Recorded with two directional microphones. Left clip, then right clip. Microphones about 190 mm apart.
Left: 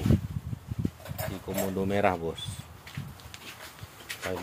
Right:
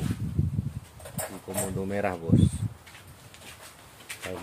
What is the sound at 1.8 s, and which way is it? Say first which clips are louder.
Speech: left 5 dB; 20° left (ahead or behind).